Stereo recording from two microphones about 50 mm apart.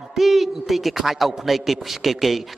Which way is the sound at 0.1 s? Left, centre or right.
Centre.